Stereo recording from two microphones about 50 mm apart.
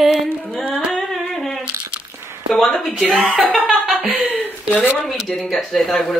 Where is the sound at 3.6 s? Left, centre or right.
Centre.